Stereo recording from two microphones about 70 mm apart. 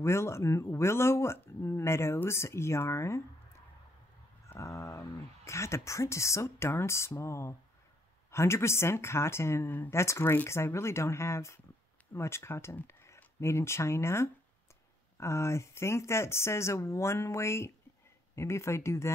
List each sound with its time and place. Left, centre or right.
0.0 s speech: left